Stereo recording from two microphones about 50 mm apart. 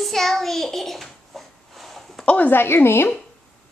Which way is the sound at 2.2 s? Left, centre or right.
Left.